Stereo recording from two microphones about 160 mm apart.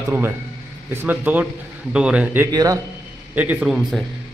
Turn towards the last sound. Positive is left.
turn(degrees=0)  # may be behind; listen again after turning